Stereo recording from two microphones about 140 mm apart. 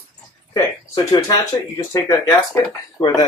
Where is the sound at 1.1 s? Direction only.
30° left (ahead or behind).